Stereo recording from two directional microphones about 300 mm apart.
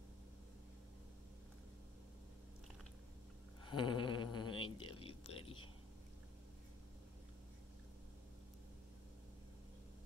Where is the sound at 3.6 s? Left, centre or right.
Centre.